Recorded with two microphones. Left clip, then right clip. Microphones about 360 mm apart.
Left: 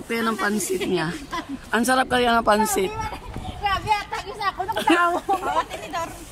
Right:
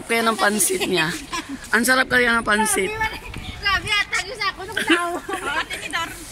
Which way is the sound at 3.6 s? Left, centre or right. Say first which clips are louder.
Right 2 dB; centre.